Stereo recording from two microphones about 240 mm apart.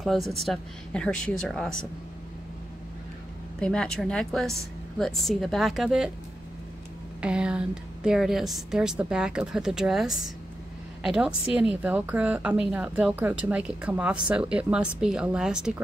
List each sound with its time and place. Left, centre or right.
0.0 s a woman's voice: centre
3.5 s a woman's voice: centre
7.2 s a woman's voice: centre